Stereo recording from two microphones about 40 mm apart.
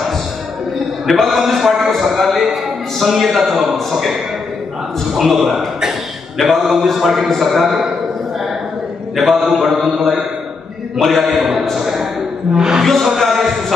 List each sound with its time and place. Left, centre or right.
1.0 s a man's voice: centre
5.1 s mantra: centre
9.1 s mantra: centre
12.5 s music: centre
12.8 s mantra: centre